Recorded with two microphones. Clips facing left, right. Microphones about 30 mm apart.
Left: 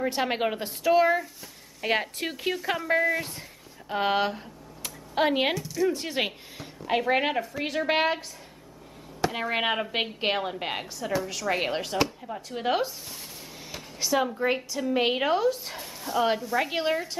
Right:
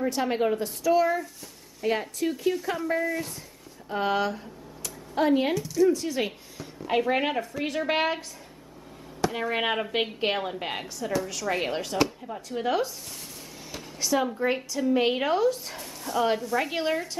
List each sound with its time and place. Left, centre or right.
0.0 s a woman's voice: left
2.9 s a woman's voice: left
4.8 s a sound: left
5.5 s a woman's voice: centre
5.9 s a woman's voice: left
6.9 s a woman's voice: centre
9.2 s a woman's voice: centre
13.7 s a woman's voice: centre